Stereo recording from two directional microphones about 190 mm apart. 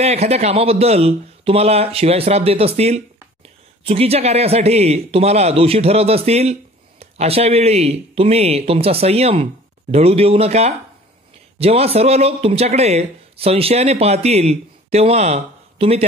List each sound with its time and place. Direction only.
0.0 s a man's voice: 35° right (ahead or behind)